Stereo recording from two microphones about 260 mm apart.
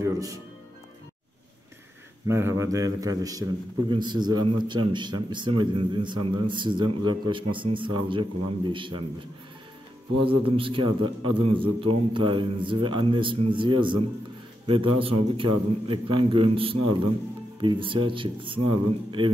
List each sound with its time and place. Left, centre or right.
0.0 s music: centre
2.2 s a man's voice: centre
10.2 s a man's voice: right